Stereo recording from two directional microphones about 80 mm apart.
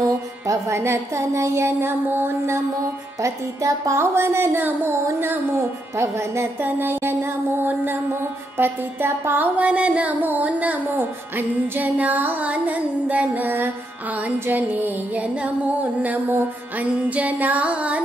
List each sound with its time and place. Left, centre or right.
0.0 s music: right
6.6 s a sound: right
9.6 s music: centre